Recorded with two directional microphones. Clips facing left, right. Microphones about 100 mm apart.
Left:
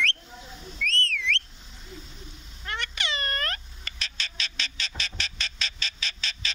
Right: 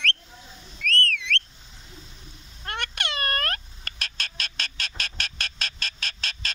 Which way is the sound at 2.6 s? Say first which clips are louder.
Right 1 dB; 55° right (ahead or behind).